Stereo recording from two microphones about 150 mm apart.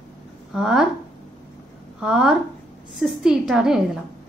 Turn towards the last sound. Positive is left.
turn(degrees=-5)  # may be behind; listen again after turning